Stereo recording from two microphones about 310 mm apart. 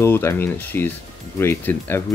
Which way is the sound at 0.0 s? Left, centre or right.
Centre.